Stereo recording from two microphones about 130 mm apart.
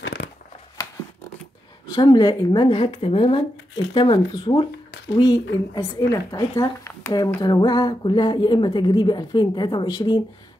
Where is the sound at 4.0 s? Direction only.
35° left (ahead or behind).